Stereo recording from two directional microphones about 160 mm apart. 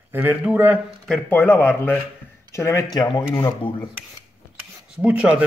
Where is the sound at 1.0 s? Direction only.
5° left (ahead or behind); by 3.9 s 25° left (ahead or behind).